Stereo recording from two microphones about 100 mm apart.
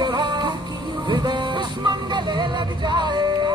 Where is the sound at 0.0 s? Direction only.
45° right (ahead or behind).